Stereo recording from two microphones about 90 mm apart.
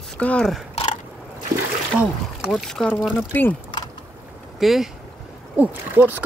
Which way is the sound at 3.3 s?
20° left (ahead or behind).